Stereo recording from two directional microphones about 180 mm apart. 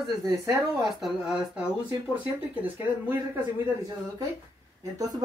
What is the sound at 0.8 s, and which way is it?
Speech, centre (ahead or behind).